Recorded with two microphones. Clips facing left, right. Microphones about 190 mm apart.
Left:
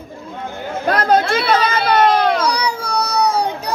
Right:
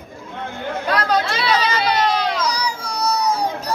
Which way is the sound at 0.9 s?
50° left (ahead or behind).